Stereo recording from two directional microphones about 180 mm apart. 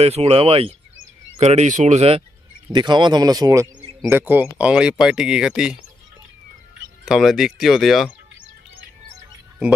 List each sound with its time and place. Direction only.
0.0 s speech: 35° right (ahead or behind); by 5.8 s 5° right (ahead or behind)
7.1 s speech: centre (ahead or behind)